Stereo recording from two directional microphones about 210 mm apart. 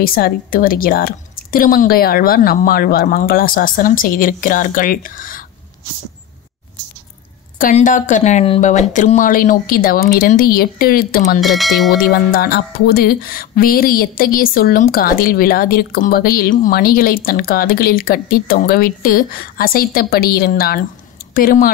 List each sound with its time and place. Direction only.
0.0 s speech: 45° left (ahead or behind)
7.5 s speech: 40° left (ahead or behind)
11.4 s speech: centre (ahead or behind)
12.0 s speech: 45° left (ahead or behind)